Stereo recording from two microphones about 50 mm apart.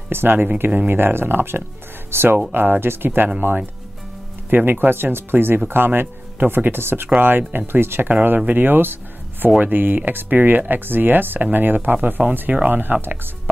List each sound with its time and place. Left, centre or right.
0.1 s speech: right